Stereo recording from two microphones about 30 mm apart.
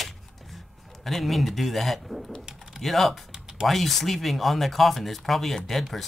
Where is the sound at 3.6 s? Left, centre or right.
Centre.